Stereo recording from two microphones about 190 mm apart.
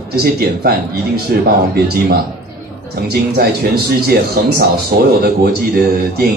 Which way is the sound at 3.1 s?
55° right (ahead or behind).